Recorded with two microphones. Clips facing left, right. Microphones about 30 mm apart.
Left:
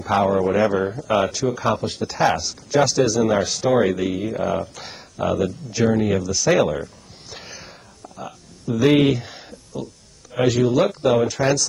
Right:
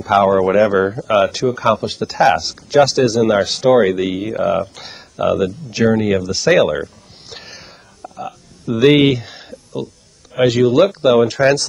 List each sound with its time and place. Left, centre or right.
0.0 s speech: right
0.8 s speech: right
1.1 s speech: right
4.4 s speech: right
4.7 s speech: right
7.2 s a sound: right
8.7 s speech: right